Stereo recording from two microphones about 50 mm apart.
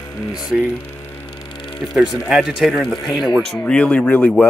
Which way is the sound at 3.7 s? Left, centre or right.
Left.